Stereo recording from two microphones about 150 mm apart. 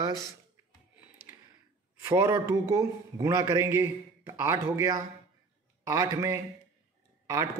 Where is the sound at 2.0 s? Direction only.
20° right (ahead or behind).